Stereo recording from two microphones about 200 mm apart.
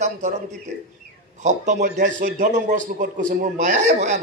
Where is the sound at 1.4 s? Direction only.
35° right (ahead or behind).